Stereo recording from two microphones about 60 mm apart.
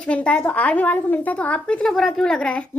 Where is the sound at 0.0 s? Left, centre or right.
Left.